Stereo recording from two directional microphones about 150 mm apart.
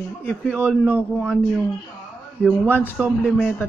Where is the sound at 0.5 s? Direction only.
10° right (ahead or behind).